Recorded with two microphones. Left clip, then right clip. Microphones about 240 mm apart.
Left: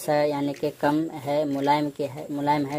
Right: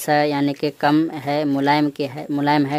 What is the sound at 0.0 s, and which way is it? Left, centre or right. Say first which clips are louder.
Speech: right 5 dB; right.